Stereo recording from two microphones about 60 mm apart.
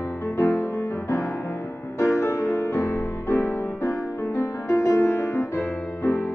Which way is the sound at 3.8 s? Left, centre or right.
Left.